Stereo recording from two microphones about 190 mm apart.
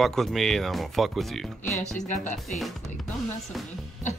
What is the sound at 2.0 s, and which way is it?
Speech, 40° left (ahead or behind).